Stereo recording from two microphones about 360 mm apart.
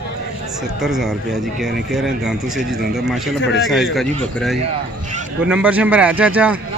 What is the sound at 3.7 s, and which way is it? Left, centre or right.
Speech, centre.